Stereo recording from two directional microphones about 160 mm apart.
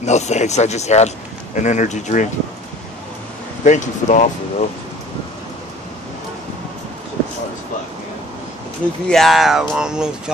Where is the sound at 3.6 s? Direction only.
50° left (ahead or behind).